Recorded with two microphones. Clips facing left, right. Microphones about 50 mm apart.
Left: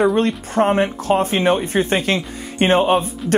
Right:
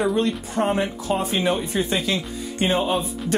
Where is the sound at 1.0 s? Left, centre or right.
Left.